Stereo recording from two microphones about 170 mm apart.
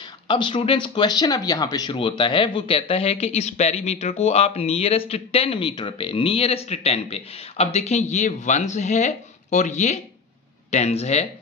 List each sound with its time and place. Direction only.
0.3 s speech: 30° left (ahead or behind)